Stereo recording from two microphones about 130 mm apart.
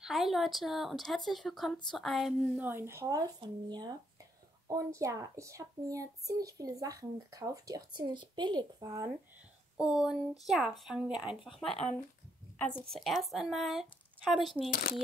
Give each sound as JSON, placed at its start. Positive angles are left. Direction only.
{"t": 0.0, "sound": "speech", "side_deg": 0}
{"t": 2.6, "sound": "a child's voice", "side_deg": -20}
{"t": 9.8, "sound": "speech", "side_deg": -5}
{"t": 12.9, "sound": "speech", "side_deg": 0}